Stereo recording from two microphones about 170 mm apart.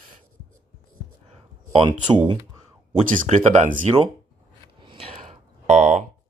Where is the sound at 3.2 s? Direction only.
45° right (ahead or behind).